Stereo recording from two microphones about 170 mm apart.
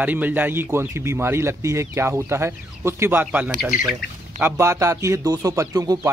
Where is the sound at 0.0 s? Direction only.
10° right (ahead or behind).